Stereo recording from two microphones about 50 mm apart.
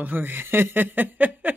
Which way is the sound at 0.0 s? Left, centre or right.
Right.